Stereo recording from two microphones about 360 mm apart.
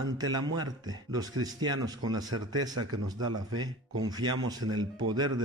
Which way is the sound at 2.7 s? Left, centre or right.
Right.